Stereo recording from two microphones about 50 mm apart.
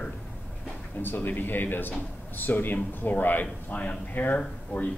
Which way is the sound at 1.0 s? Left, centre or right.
Left.